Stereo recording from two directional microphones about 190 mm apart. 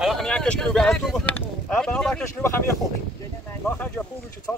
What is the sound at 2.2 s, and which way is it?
Speech, 15° left (ahead or behind).